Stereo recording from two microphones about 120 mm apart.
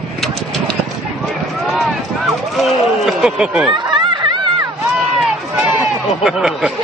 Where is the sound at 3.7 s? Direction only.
40° right (ahead or behind).